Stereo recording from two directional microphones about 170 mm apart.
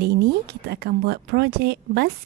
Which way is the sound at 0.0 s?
70° right (ahead or behind).